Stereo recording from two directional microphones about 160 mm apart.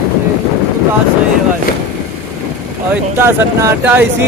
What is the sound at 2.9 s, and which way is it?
Speech, 15° right (ahead or behind).